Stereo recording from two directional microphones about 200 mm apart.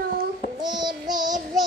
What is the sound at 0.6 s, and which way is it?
Child singing, 20° right (ahead or behind).